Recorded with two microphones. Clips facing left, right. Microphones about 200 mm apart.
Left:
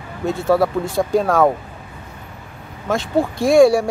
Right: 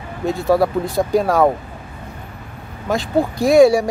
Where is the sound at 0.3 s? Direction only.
Centre (ahead or behind).